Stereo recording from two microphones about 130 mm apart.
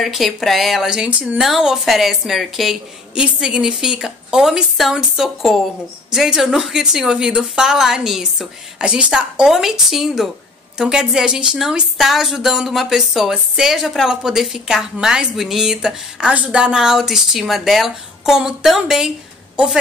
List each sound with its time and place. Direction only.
0.0 s a woman's voice: centre (ahead or behind)